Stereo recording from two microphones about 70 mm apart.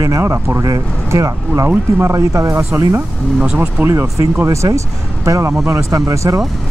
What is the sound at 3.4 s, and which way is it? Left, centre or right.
Speech, centre.